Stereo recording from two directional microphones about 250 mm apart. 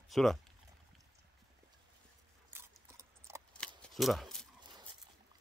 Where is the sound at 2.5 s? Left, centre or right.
Centre.